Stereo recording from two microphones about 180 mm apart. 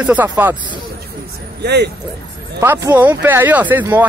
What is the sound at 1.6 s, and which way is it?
Speech, 65° right (ahead or behind).